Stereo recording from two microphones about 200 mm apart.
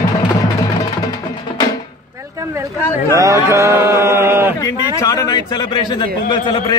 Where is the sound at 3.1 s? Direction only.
15° right (ahead or behind).